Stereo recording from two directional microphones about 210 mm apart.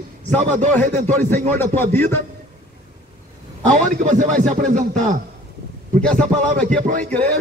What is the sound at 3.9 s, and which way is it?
A man's voice, 35° right (ahead or behind).